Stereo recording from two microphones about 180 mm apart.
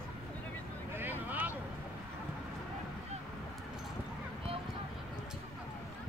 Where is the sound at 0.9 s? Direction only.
10° right (ahead or behind).